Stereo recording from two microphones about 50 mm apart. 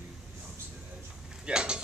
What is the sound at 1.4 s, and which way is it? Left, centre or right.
Speech, centre.